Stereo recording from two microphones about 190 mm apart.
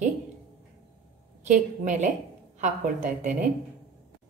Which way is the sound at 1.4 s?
40° right (ahead or behind).